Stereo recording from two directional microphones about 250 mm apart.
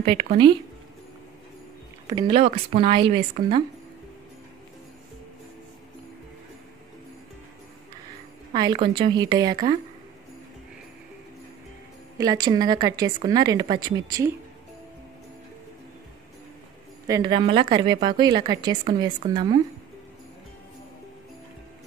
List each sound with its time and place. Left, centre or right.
0.0 s speech: right
2.0 s speech: centre
8.5 s a woman's voice: centre
12.2 s a woman's voice: centre
17.1 s a woman's voice: centre